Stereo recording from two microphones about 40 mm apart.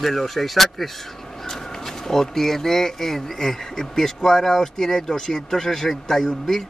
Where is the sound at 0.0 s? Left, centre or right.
Centre.